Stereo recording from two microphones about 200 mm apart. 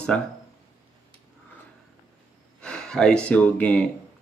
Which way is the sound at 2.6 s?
5° left (ahead or behind).